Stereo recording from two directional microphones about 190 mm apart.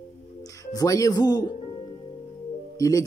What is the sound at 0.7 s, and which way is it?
Speech, 20° left (ahead or behind).